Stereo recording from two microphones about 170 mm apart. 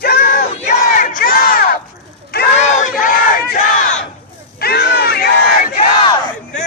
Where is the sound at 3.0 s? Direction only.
55° left (ahead or behind).